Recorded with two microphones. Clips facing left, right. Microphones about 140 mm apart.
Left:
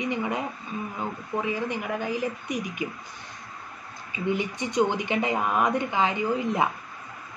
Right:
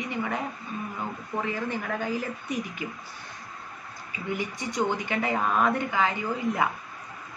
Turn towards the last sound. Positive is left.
turn(degrees=20)  # may be behind; listen again after turning